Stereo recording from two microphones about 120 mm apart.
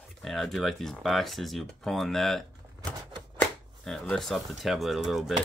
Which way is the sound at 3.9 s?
5° left (ahead or behind).